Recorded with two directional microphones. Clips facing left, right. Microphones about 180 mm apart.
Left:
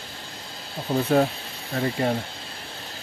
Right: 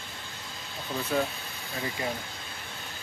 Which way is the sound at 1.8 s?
60° left (ahead or behind).